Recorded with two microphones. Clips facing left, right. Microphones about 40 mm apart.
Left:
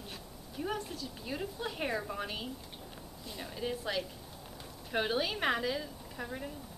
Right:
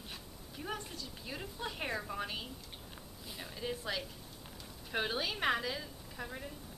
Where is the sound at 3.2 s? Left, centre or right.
Centre.